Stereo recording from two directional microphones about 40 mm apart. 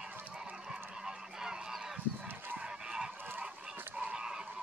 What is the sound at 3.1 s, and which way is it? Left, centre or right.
Fowl, right.